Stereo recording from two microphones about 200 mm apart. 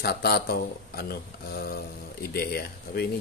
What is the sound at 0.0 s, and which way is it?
Speech, 50° left (ahead or behind).